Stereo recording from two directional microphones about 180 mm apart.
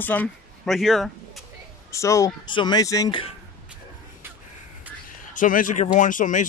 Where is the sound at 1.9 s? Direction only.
15° left (ahead or behind).